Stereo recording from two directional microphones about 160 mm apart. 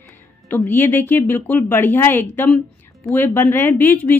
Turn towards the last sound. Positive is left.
turn(degrees=10)  # may be behind; listen again after turning